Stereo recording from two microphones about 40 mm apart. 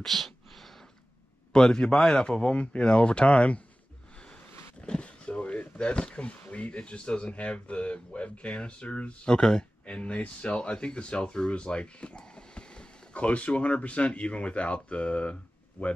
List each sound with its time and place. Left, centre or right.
0.0 s a sound: centre
1.5 s speech: centre
4.8 s speech: left
9.3 s speech: centre
13.1 s speech: left